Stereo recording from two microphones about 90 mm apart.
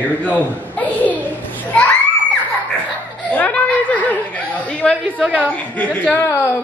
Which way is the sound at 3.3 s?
15° left (ahead or behind).